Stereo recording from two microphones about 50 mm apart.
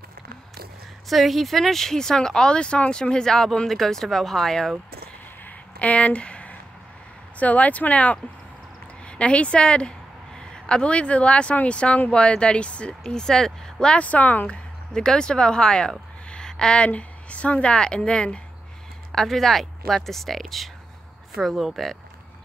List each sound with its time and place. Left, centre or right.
1.0 s speech: centre
5.4 s a sound: left
7.3 s a woman's voice: left
13.0 s speech: centre
13.9 s speech: left
14.9 s speech: centre
19.1 s speech: centre